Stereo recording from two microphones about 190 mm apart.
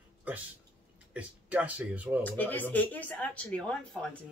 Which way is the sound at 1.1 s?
5° right (ahead or behind).